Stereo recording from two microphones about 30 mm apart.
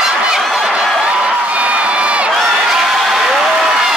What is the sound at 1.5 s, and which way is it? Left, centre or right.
Crowd, right.